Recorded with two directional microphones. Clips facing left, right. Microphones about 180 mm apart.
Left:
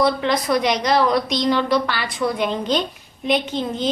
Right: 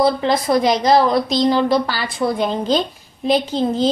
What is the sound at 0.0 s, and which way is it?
A woman's voice, 30° right (ahead or behind).